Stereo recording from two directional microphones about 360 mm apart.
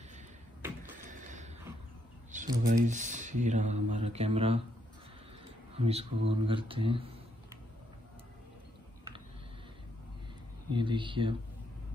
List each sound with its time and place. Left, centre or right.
1.1 s a sound: centre
2.3 s speech: right
5.8 s speech: centre
10.7 s speech: centre